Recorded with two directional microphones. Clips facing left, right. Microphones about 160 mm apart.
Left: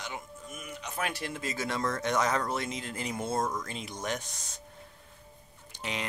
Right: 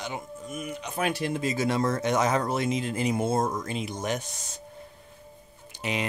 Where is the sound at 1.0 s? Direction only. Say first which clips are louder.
Right 7 dB; 15° right (ahead or behind).